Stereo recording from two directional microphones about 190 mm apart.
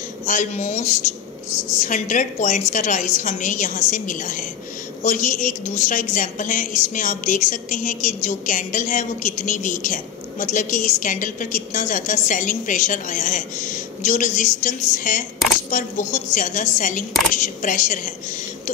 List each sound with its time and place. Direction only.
0.3 s a woman's voice: 40° left (ahead or behind)